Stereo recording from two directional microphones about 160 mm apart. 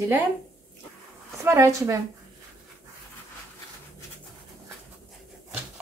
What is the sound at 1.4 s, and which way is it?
Speech, 15° right (ahead or behind).